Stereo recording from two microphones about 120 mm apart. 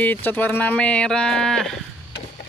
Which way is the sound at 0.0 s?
15° left (ahead or behind).